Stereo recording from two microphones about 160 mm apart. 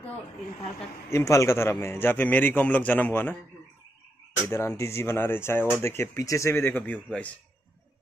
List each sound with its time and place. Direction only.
1.1 s speech: 20° left (ahead or behind)
4.5 s speech: 15° left (ahead or behind)